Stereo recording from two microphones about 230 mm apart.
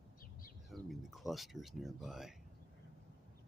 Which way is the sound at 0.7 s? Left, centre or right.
Centre.